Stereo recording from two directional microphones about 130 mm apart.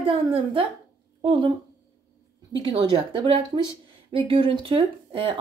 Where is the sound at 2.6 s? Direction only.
35° right (ahead or behind).